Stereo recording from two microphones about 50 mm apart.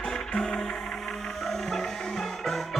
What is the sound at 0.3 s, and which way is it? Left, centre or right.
Music, centre.